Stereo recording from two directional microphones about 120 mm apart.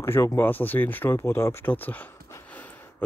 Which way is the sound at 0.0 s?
20° left (ahead or behind).